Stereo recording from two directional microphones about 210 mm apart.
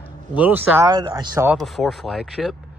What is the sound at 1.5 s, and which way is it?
Speech, centre (ahead or behind).